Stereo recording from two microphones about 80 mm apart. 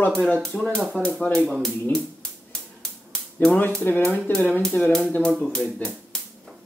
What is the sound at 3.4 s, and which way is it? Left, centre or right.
Speech, left.